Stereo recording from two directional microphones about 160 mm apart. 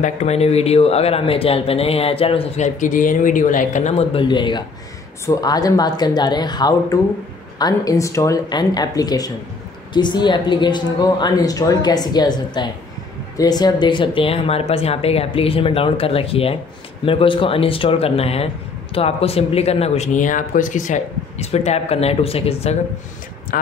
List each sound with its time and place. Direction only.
0.0 s speech: 45° left (ahead or behind)
23.5 s speech: 65° left (ahead or behind)